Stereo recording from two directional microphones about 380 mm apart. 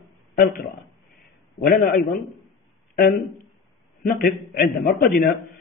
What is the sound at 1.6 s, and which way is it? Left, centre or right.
Music, left.